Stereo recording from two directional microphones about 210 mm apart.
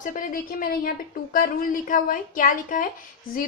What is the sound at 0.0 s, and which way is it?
A woman's voice, 40° left (ahead or behind).